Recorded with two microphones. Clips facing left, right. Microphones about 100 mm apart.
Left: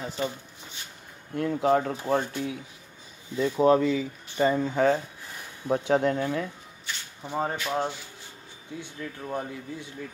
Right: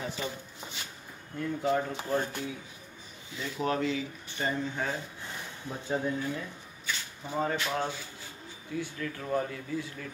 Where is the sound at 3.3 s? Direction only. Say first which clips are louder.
Left 12 dB; 80° right.